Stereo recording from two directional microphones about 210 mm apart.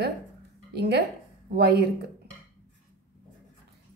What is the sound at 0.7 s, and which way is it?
A woman's voice, 50° right (ahead or behind).